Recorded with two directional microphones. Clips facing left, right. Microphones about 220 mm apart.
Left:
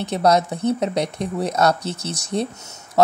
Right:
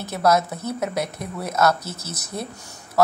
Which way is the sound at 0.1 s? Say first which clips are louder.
Left 3 dB; 25° left (ahead or behind).